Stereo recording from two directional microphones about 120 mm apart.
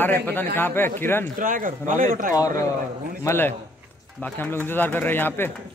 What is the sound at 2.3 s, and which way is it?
A man's voice, 30° left (ahead or behind).